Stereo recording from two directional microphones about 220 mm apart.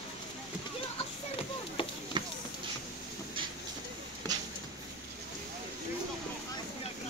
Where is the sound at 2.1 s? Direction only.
20° right (ahead or behind).